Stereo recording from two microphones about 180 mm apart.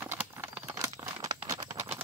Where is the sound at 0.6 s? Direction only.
20° right (ahead or behind).